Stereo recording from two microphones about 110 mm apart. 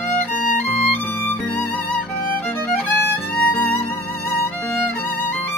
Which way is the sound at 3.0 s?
15° left (ahead or behind).